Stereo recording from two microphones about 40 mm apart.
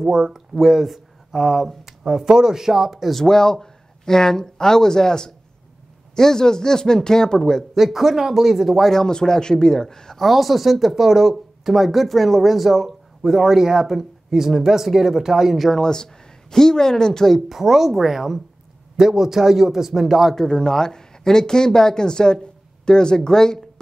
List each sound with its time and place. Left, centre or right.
0.0 s a man's voice: centre
3.2 s speech: centre
7.7 s a man's voice: centre
8.9 s speech: centre
10.2 s speech: centre
15.7 s speech: centre
17.5 s a man's voice: centre
20.3 s speech: centre